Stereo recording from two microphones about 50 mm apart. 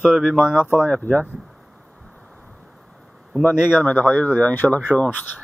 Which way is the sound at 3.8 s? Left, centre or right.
Left.